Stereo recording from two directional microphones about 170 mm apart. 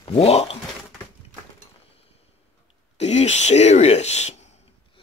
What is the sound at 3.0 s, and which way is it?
Speech, 40° left (ahead or behind).